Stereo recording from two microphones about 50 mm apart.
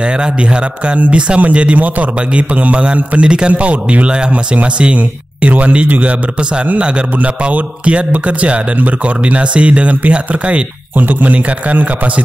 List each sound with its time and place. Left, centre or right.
0.8 s a man's voice: right
7.4 s a man's voice: right